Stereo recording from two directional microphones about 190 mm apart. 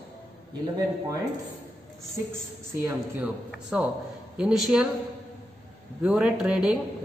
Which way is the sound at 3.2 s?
5° right (ahead or behind).